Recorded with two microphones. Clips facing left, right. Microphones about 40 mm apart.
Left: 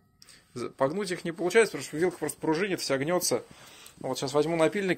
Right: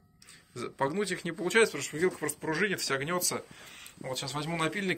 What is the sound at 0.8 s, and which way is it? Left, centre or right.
Speech, right.